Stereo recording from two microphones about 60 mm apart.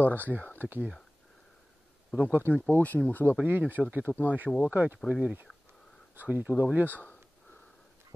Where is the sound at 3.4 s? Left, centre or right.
Right.